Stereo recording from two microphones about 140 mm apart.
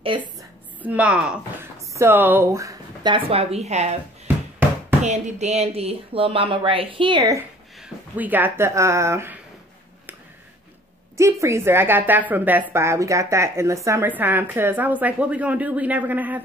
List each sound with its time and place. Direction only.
0.1 s speech: 35° right (ahead or behind)
0.8 s speech: 10° right (ahead or behind); by 3.9 s 50° right (ahead or behind)
5.0 s speech: 55° right (ahead or behind); by 7.3 s 35° right (ahead or behind)
7.8 s speech: 10° right (ahead or behind)
11.1 s speech: 20° right (ahead or behind)